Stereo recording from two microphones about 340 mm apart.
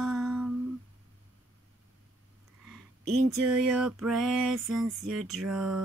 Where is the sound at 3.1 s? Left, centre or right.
Right.